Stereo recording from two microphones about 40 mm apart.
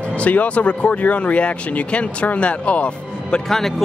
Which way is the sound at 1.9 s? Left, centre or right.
Left.